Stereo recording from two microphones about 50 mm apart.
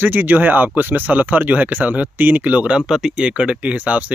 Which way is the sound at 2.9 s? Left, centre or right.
Centre.